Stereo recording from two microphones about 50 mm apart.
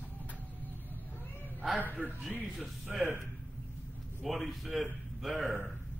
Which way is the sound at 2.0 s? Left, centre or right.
Right.